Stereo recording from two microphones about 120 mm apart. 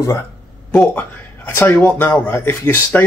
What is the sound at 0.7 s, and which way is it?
Speech, 15° left (ahead or behind).